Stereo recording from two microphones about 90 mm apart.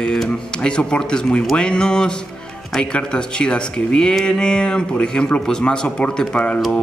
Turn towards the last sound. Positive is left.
turn(degrees=10)  # may be behind; listen again after turning